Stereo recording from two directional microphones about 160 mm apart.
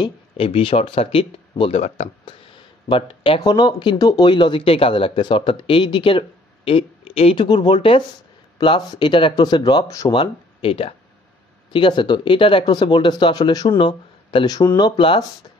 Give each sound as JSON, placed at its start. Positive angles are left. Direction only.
{"t": 0.0, "sound": "speech", "side_deg": 35}